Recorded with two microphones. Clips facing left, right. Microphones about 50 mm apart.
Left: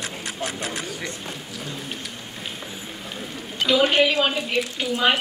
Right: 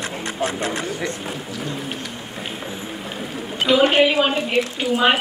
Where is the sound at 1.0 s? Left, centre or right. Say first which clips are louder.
Right 6 dB; centre.